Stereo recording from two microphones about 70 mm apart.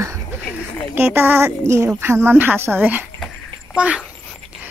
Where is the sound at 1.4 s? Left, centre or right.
Right; by 4.0 s centre.